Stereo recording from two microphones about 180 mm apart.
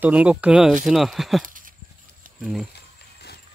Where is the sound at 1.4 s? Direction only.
50° right (ahead or behind).